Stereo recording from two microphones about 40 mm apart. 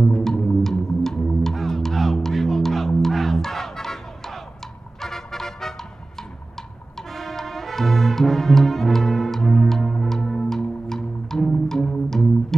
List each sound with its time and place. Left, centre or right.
0.0 s music: centre
7.0 s brass instrument: centre
11.2 s music: centre